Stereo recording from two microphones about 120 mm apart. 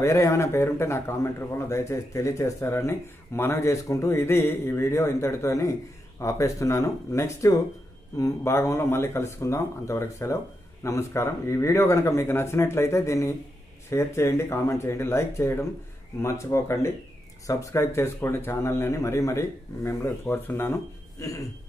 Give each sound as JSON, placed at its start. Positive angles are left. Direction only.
{"t": 0.0, "sound": "speech", "side_deg": 25}